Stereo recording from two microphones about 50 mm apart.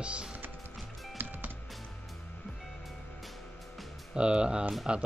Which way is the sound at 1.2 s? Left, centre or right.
Right.